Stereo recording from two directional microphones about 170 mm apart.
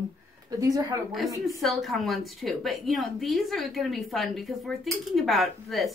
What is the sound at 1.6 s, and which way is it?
A woman's voice, centre (ahead or behind).